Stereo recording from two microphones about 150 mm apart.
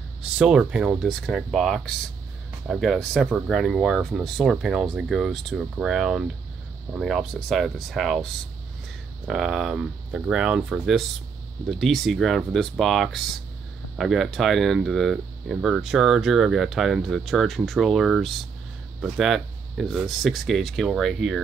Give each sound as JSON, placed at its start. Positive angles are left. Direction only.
{"t": 0.2, "sound": "speech", "side_deg": -5}
{"t": 9.3, "sound": "speech", "side_deg": 0}